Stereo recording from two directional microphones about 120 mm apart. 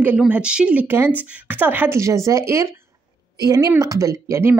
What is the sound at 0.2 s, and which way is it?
A woman's voice, 10° right (ahead or behind).